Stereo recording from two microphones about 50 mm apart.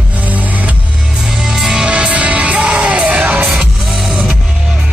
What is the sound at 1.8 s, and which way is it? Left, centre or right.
Music, right.